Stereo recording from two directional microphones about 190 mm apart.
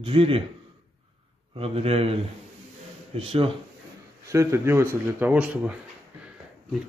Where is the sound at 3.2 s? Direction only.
30° right (ahead or behind).